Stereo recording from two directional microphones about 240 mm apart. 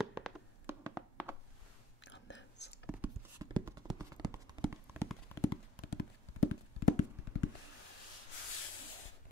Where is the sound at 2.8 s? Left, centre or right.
Centre.